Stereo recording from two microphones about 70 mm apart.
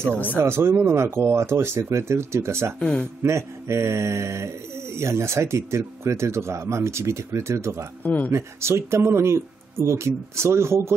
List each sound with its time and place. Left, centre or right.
0.1 s speech: left
0.4 s speech: right
2.8 s speech: centre
3.2 s speech: right
8.0 s speech: left
8.3 s speech: right